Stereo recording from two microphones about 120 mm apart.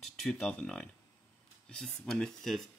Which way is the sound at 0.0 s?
5° left (ahead or behind).